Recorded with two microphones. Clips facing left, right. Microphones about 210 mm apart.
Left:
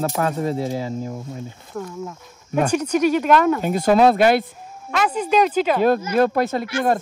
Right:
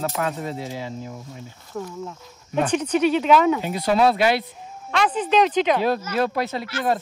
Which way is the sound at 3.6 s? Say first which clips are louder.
Left 4 dB; 50° left (ahead or behind).